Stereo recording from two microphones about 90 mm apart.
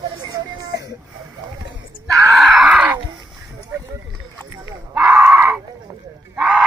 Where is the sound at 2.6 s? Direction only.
15° right (ahead or behind).